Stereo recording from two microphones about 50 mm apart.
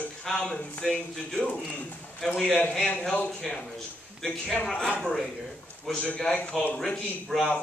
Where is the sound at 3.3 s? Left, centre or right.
Centre.